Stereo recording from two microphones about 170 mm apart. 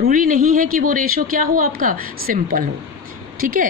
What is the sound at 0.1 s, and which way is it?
A woman's voice, 55° right (ahead or behind).